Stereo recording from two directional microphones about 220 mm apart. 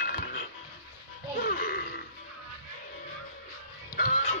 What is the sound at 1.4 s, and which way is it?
Music, 40° left (ahead or behind).